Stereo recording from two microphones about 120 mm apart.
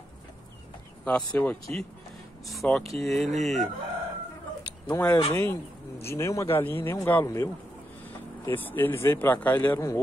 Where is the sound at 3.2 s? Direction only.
75° right (ahead or behind).